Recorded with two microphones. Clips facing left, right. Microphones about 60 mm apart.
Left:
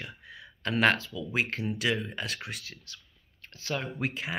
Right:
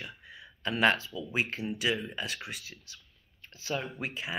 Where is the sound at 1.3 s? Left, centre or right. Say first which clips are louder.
Left 2 dB; left.